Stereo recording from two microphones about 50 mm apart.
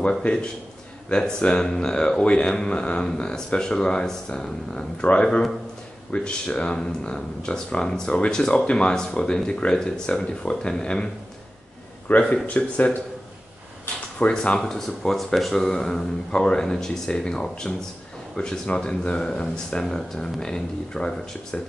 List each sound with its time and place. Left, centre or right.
0.2 s a man's voice: centre
12.1 s speech: left
14.3 s speech: centre
14.6 s a man's voice: centre